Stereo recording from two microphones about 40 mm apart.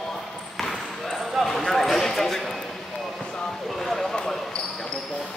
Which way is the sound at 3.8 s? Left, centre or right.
Centre.